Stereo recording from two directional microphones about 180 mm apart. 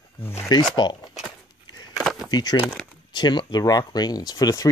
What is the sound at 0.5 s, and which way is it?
Speech, 20° left (ahead or behind).